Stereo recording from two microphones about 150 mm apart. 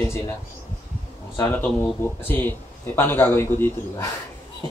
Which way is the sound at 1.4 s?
10° left (ahead or behind).